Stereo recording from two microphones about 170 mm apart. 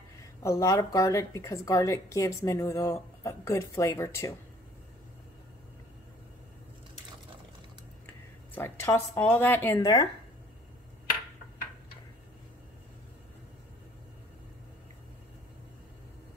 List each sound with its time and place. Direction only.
0.4 s a woman's voice: 20° left (ahead or behind)
8.5 s a woman's voice: 10° left (ahead or behind)